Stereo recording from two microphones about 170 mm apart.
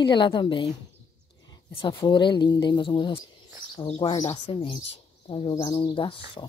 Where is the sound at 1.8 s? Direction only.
30° left (ahead or behind).